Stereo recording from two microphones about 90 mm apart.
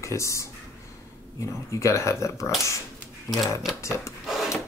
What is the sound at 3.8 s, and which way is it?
Rub, 35° left (ahead or behind).